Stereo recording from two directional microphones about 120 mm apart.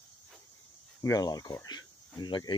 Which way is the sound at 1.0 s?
30° left (ahead or behind).